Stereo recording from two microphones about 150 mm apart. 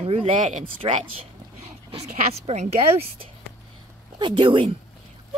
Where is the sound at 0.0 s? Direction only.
40° right (ahead or behind).